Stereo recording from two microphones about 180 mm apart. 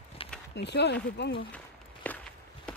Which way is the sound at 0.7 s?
70° left (ahead or behind).